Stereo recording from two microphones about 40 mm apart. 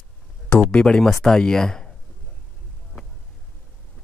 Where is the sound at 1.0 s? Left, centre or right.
Centre.